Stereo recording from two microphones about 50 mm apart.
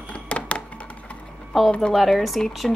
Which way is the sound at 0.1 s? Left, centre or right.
Left.